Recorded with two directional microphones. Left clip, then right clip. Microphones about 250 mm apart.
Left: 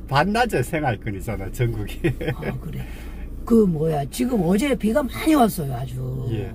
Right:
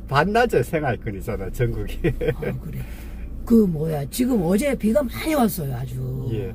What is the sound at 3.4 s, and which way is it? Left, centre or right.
Speech, centre.